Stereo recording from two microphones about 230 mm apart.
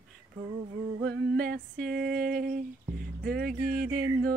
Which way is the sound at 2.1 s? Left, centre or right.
Right.